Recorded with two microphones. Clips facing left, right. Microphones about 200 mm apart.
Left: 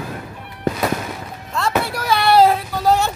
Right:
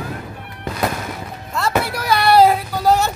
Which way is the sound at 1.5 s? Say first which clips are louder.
Even; centre (ahead or behind).